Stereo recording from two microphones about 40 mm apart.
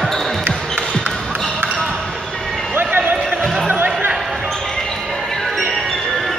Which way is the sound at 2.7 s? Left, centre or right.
Right.